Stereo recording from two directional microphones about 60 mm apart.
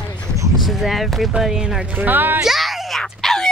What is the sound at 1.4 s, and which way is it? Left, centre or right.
Speech, centre.